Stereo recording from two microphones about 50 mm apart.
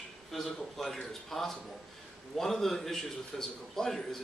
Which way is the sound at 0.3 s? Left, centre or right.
Centre.